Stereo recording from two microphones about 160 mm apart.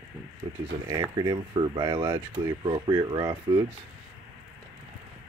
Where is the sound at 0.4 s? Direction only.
30° right (ahead or behind).